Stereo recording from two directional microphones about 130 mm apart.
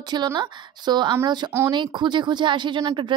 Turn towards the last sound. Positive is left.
turn(degrees=-35)  # may be behind; listen again after turning